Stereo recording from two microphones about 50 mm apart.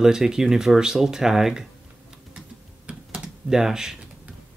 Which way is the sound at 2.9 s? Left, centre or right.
Right.